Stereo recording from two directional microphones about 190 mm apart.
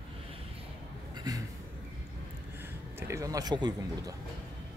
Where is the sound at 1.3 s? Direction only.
20° right (ahead or behind).